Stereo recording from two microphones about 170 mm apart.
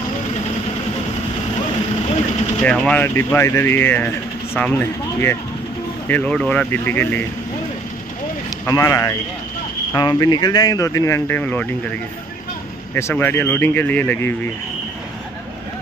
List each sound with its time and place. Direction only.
2.6 s speech: 5° left (ahead or behind)
8.6 s speech: 20° left (ahead or behind)
12.9 s speech: 10° left (ahead or behind)